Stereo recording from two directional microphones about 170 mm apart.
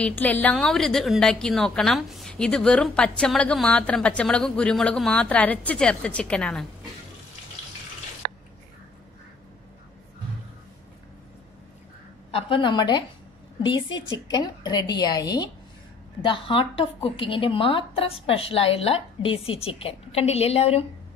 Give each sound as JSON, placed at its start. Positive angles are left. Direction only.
{"t": 0.2, "sound": "a woman's voice", "side_deg": 10}
{"t": 12.3, "sound": "a woman's voice", "side_deg": 35}